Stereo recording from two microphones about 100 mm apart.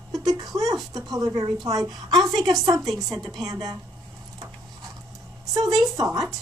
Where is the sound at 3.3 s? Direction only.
40° right (ahead or behind).